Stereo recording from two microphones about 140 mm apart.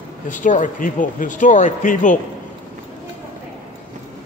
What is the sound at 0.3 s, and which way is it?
Speech, 65° left (ahead or behind).